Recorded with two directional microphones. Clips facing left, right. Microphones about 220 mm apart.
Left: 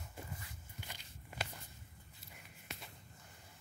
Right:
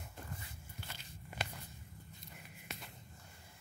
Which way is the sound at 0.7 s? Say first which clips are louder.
Right 1 dB; 15° left (ahead or behind).